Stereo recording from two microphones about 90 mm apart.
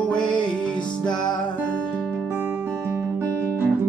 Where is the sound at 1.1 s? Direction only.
55° left (ahead or behind).